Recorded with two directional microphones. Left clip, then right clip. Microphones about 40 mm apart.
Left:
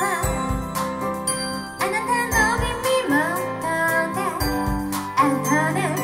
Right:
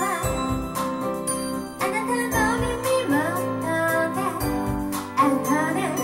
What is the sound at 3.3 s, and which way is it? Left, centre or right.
Music, left.